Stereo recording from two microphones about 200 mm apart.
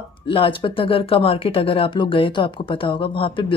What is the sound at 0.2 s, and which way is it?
Speech, 25° left (ahead or behind).